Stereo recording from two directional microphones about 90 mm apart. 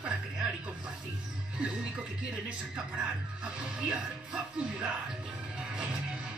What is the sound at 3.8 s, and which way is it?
Speech, 10° right (ahead or behind).